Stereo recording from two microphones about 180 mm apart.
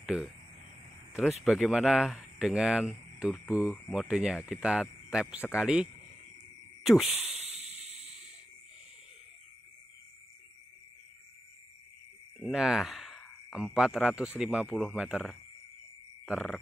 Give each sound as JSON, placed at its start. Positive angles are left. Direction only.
{"t": 0.0, "sound": "speech", "side_deg": -5}
{"t": 1.4, "sound": "speech", "side_deg": 0}
{"t": 6.8, "sound": "a sound", "side_deg": 0}
{"t": 7.3, "sound": "a sound", "side_deg": -35}
{"t": 12.4, "sound": "speech", "side_deg": -5}
{"t": 16.3, "sound": "frog", "side_deg": 0}